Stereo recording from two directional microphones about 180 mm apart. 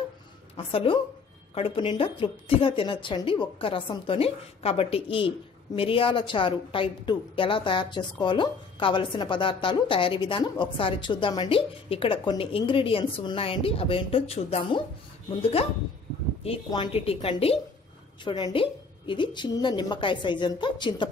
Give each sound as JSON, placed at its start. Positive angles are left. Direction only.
{"t": 0.6, "sound": "a woman's voice", "side_deg": 30}
{"t": 16.4, "sound": "a woman's voice", "side_deg": 30}